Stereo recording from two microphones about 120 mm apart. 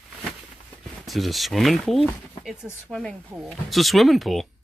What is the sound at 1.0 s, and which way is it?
Speech, centre (ahead or behind).